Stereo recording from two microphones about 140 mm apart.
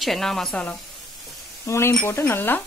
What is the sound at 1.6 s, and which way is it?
Speech, 20° left (ahead or behind).